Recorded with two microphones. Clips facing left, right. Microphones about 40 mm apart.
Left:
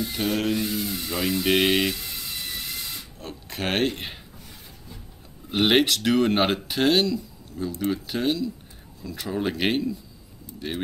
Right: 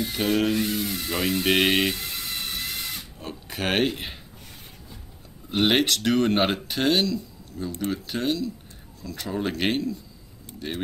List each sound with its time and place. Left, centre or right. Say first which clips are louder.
0.2 s speech: right 3 dB; centre
0.6 s speech: right 1 dB; right
1.4 s speech: even; centre
1.7 s speech: even; right
3.2 s speech: even; centre
5.5 s speech: left 1 dB; centre